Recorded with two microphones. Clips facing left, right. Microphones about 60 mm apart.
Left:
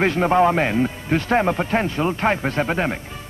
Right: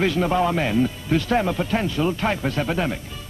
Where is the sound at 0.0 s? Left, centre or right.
Left.